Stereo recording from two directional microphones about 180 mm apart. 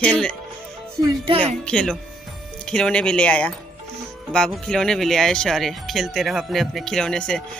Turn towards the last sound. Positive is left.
turn(degrees=5)  # may be behind; listen again after turning